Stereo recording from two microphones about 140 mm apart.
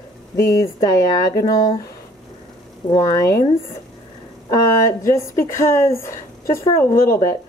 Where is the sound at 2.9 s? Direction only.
25° left (ahead or behind).